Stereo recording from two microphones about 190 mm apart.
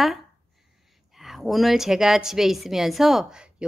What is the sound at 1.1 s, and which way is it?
A woman's voice, centre (ahead or behind).